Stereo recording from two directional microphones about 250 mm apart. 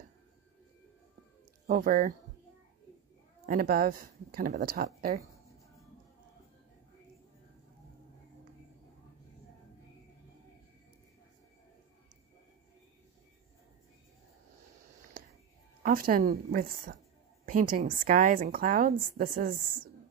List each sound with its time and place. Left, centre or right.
1.7 s a woman's voice: right
3.4 s a woman's voice: right
15.8 s a woman's voice: right